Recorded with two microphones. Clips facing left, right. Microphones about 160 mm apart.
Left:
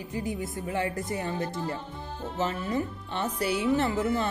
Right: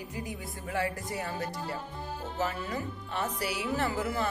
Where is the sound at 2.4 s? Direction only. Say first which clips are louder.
Left 5 dB; 25° left (ahead or behind).